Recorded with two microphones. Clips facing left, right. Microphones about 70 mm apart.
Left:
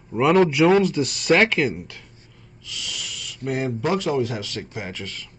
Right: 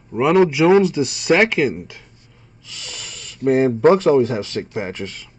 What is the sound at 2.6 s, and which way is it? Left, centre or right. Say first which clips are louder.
Speech: left 2 dB; right.